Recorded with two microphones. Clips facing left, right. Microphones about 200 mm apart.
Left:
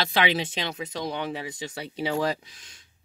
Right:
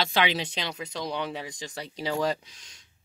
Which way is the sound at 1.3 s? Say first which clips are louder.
Left 3 dB; 5° left (ahead or behind).